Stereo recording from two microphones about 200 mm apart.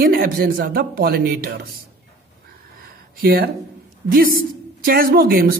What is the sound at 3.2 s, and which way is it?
Speech, 50° right (ahead or behind).